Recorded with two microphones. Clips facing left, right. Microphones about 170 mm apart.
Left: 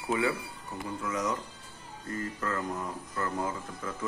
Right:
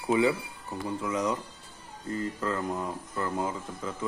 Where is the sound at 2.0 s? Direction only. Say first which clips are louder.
Right 3 dB; 20° right (ahead or behind).